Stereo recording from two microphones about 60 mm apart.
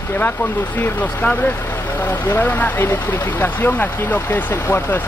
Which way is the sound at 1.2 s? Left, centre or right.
Left.